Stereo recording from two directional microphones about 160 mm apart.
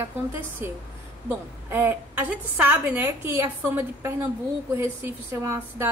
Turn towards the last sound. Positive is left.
turn(degrees=-15)  # may be behind; listen again after turning